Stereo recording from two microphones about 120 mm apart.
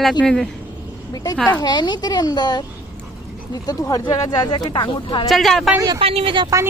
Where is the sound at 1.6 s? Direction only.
35° left (ahead or behind).